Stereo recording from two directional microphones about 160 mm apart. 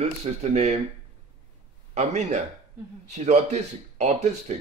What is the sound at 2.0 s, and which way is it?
Speech, 45° right (ahead or behind).